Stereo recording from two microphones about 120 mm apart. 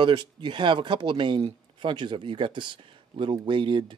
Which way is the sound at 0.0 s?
40° right (ahead or behind).